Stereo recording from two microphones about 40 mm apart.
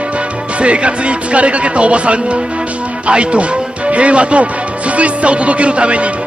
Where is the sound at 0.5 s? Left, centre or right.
Right.